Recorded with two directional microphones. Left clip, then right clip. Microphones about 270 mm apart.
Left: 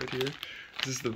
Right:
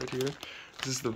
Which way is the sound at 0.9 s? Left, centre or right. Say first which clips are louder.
Right 5 dB; centre.